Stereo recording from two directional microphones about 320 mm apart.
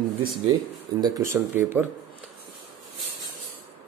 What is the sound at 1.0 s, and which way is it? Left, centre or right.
Speech, centre.